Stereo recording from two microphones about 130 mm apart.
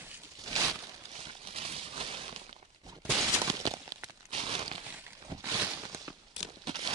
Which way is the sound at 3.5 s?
30° right (ahead or behind).